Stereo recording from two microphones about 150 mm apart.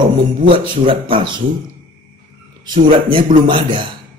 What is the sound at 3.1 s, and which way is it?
Speech, 35° right (ahead or behind).